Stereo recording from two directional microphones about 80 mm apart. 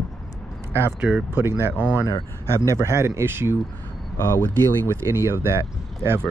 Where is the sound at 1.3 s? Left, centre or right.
Right.